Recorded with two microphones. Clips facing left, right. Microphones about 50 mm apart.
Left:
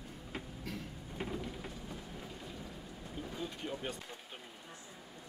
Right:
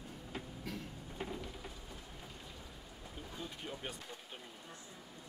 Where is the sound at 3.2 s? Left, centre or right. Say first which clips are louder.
Left 5 dB; centre.